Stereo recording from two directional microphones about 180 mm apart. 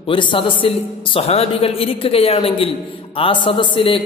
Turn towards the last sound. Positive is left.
turn(degrees=30)  # may be behind; listen again after turning